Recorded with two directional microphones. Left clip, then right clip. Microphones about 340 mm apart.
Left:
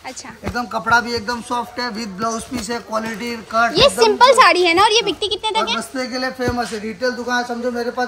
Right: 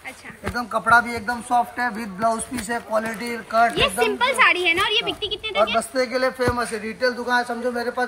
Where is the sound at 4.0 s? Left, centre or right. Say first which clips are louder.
Left 11 dB; left.